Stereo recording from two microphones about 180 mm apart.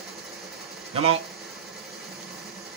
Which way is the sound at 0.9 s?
35° right (ahead or behind).